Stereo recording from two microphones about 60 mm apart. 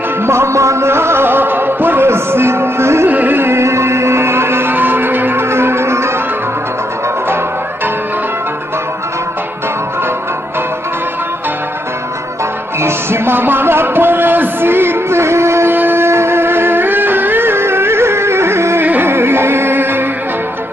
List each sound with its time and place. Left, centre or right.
0.3 s music: right
3.1 s music: right
12.8 s music: right
15.7 s music: right